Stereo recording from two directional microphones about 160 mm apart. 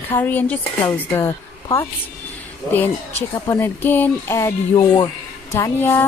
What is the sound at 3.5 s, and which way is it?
Speech, 15° left (ahead or behind).